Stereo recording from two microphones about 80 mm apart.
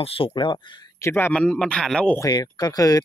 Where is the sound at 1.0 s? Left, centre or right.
Left.